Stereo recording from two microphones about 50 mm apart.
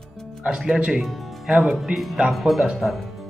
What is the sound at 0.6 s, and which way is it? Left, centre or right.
Speech, centre.